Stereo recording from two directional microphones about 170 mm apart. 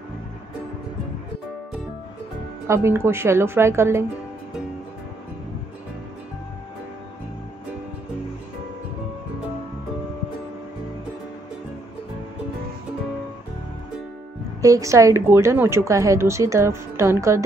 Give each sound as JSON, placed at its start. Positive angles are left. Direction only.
{"t": 2.6, "sound": "a woman's voice", "side_deg": -15}
{"t": 14.6, "sound": "a woman's voice", "side_deg": -20}